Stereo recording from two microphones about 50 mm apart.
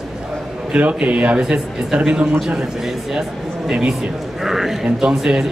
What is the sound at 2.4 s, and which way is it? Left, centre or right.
A man's voice, centre.